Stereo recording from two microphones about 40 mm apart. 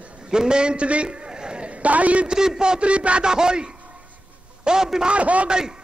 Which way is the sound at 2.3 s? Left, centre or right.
Centre.